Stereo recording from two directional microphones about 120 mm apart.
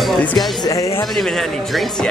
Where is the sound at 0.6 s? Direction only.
30° left (ahead or behind).